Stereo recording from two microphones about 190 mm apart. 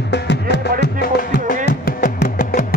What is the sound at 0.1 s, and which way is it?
Music, 65° left (ahead or behind).